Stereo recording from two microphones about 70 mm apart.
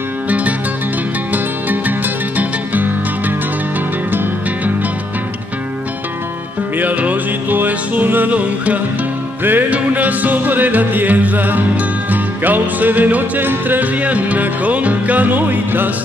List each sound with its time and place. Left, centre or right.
1.3 s music: right
6.8 s music: right